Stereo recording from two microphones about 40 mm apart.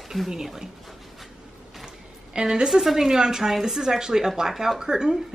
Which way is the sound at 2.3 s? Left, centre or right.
Centre.